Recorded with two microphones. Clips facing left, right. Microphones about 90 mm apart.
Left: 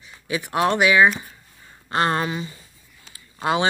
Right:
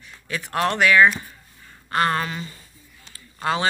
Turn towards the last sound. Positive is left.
turn(degrees=20)  # may be behind; listen again after turning